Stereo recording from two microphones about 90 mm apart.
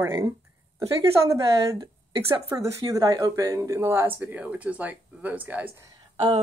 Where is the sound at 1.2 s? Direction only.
35° right (ahead or behind); by 5.7 s 15° right (ahead or behind).